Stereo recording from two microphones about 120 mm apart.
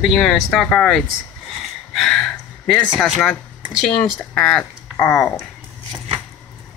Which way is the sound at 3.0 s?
5° left (ahead or behind).